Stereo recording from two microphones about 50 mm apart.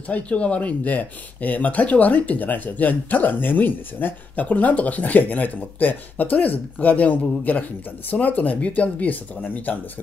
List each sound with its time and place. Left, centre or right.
0.1 s speech: left